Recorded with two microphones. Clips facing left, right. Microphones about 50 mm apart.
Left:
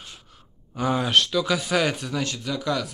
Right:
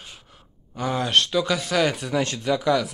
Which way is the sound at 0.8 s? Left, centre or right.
Centre.